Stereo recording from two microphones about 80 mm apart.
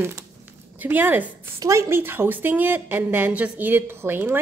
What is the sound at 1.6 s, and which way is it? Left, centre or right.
Speech, right.